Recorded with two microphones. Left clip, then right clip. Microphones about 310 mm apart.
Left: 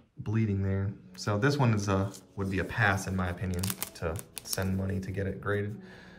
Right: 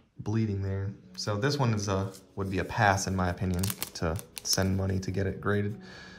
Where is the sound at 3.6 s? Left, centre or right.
Centre.